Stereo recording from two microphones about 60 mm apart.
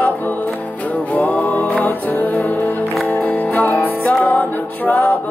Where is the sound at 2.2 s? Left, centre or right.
Left.